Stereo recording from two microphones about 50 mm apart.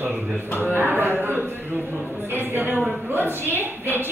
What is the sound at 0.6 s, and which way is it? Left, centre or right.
A woman's voice, right.